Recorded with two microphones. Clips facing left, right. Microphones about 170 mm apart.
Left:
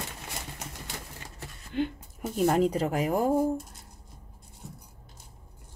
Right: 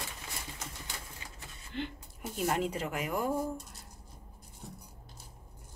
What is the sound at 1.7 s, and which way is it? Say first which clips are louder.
Speech: left 9 dB; 50° left (ahead or behind).